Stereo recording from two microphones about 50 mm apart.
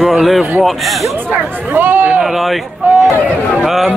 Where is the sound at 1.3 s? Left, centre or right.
Right.